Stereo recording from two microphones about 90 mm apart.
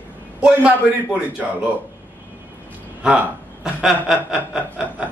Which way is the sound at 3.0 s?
10° right (ahead or behind).